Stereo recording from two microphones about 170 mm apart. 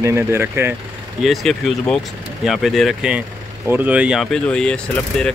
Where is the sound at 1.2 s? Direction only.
Centre (ahead or behind).